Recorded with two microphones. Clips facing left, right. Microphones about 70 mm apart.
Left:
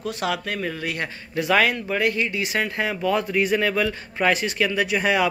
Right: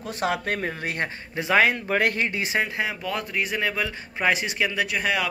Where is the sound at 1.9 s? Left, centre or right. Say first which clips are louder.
Even; right.